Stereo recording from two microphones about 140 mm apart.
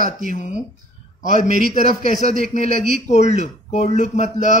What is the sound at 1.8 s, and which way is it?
A man's voice, 90° right.